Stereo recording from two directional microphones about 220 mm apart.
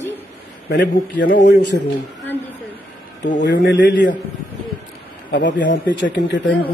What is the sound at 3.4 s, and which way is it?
Speech, 55° left (ahead or behind).